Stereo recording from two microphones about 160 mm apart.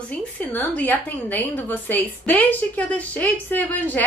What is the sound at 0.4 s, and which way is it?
Speech, 10° left (ahead or behind).